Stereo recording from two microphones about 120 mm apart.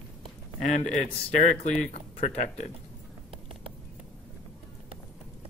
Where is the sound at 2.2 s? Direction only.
70° left (ahead or behind).